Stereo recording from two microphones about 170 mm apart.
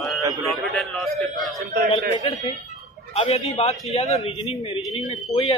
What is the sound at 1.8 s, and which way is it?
A man's voice, 35° left (ahead or behind).